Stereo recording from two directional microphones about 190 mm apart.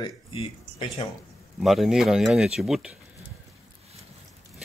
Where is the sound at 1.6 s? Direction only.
Centre (ahead or behind).